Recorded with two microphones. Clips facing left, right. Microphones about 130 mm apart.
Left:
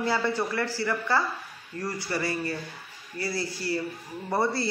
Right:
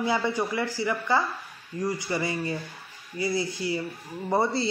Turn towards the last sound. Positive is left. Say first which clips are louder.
# right 2 dB
turn(degrees=-20)  # may be behind; listen again after turning